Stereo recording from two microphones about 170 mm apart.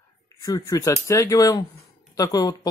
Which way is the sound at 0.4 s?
20° left (ahead or behind).